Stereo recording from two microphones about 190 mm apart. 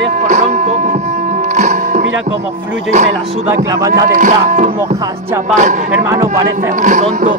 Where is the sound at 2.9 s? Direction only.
40° right (ahead or behind).